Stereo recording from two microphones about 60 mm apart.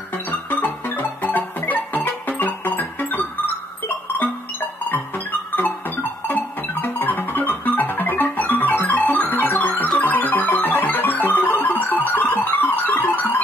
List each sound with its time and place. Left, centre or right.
0.1 s music: left